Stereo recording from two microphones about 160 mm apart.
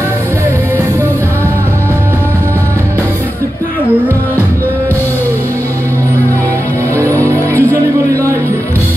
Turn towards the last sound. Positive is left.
turn(degrees=10)  # may be behind; listen again after turning